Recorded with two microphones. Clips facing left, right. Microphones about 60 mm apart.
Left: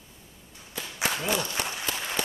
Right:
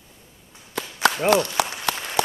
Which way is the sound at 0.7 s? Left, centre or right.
Right.